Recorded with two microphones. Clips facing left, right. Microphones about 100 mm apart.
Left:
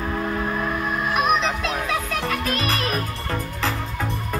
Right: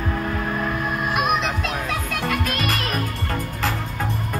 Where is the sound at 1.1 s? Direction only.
5° right (ahead or behind).